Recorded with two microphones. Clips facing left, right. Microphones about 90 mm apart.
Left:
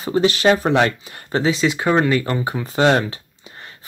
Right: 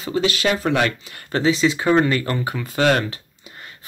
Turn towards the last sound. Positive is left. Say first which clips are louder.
# left 2 dB
turn(degrees=25)  # may be behind; listen again after turning